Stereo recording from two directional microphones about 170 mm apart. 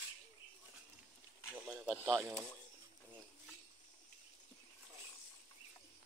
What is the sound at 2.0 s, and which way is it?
Speech, 15° right (ahead or behind).